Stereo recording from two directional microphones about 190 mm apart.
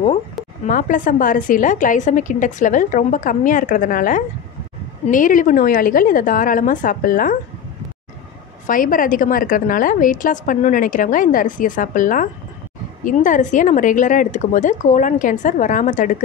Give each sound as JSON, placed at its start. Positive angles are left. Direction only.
{"t": 0.7, "sound": "a woman's voice", "side_deg": 45}
{"t": 8.6, "sound": "a woman's voice", "side_deg": 45}